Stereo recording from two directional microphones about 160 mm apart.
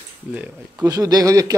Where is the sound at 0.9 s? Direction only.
25° right (ahead or behind).